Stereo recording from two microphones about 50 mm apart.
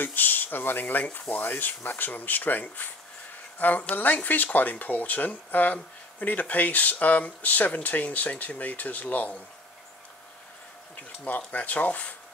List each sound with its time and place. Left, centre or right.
0.0 s speech: left
11.0 s speech: left